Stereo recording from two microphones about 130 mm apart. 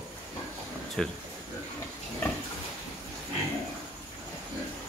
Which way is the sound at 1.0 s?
Centre (ahead or behind).